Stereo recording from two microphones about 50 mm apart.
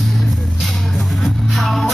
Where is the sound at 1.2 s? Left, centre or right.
Centre.